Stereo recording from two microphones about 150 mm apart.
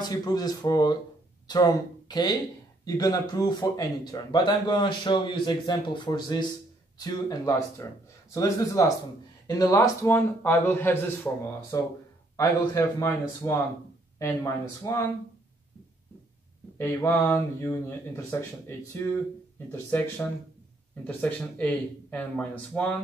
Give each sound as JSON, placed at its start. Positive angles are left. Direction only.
{"t": 0.0, "sound": "speech", "side_deg": 25}
{"t": 12.4, "sound": "speech", "side_deg": 20}
{"t": 16.7, "sound": "speech", "side_deg": 15}